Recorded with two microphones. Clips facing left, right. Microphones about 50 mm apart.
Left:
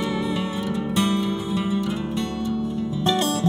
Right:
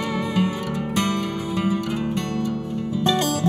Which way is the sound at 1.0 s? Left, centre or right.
Right.